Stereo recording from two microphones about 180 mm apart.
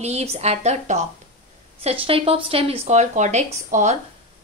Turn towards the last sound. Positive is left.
turn(degrees=-40)  # may be behind; listen again after turning